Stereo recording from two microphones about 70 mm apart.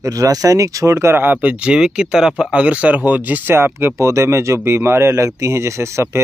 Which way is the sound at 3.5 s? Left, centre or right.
Right.